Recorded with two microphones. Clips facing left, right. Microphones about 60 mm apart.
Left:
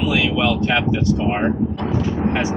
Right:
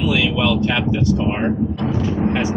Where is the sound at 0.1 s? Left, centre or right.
Centre.